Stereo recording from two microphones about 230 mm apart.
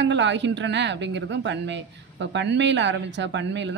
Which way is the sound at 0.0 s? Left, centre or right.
Right.